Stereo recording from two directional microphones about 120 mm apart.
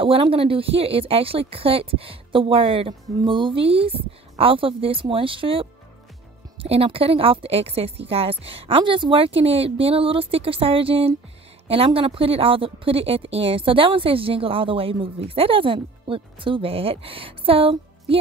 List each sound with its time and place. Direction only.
0.0 s a woman's voice: 50° right (ahead or behind)